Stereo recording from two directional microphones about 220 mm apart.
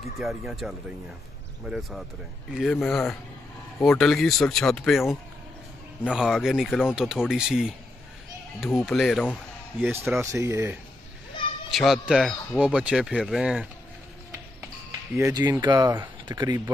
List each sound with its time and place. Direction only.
0.2 s speech: centre (ahead or behind)
8.7 s speech: centre (ahead or behind)
9.8 s speech: 10° right (ahead or behind)
11.7 s speech: centre (ahead or behind)
15.1 s speech: 15° right (ahead or behind)